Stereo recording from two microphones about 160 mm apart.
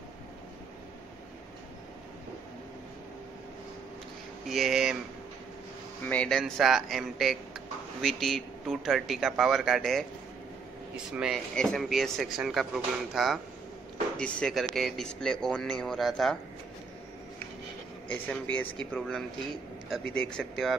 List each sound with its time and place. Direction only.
4.5 s speech: centre (ahead or behind)
6.0 s speech: 5° left (ahead or behind)
11.1 s speech: 5° right (ahead or behind)
18.0 s a man's voice: 10° left (ahead or behind)